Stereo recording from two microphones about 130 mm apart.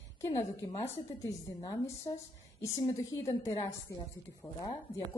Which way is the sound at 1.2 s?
30° left (ahead or behind).